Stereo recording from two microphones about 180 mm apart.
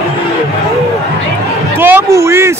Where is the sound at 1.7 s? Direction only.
10° right (ahead or behind).